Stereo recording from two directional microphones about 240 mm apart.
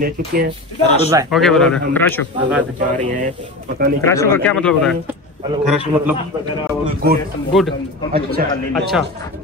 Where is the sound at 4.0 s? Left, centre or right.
Centre.